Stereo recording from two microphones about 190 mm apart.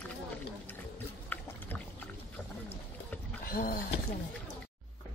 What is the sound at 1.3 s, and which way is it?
Boat, 10° left (ahead or behind).